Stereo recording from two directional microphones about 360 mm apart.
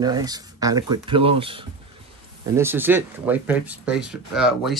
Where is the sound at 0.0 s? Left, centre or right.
Centre.